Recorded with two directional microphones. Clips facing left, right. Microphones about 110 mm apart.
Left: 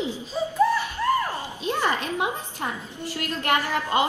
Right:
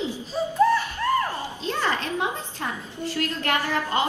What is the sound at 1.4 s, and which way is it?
A woman's voice, 15° left (ahead or behind).